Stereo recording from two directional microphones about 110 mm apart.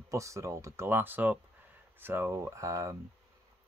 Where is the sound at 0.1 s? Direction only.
30° right (ahead or behind).